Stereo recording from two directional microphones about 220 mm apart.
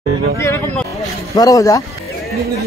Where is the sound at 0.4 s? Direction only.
10° left (ahead or behind).